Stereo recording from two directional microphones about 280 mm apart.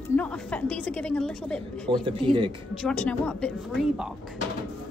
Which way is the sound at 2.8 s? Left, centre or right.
Centre.